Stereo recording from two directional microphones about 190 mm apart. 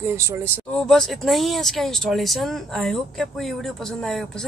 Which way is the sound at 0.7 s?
Centre (ahead or behind).